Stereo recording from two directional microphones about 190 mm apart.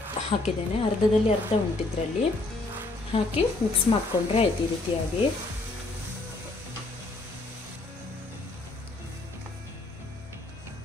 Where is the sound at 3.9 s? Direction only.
30° left (ahead or behind).